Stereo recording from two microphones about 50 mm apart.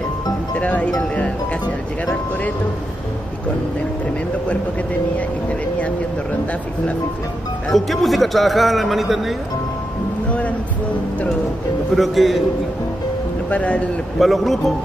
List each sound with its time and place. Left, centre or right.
0.6 s speech: left
7.7 s a man's voice: centre
11.9 s a man's voice: centre
13.5 s speech: left
14.2 s a man's voice: centre